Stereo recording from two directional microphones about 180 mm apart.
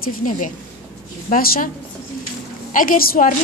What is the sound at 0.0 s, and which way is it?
A woman's voice, 45° left (ahead or behind).